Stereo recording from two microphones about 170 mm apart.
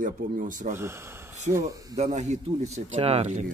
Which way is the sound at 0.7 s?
15° right (ahead or behind).